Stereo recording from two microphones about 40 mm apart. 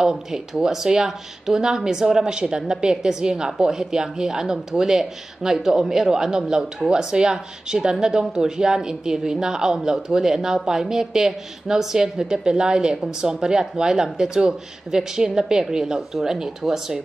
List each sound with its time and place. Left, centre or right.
0.0 s a woman's voice: centre